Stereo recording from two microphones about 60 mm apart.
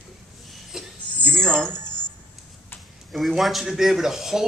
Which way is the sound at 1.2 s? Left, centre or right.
Centre.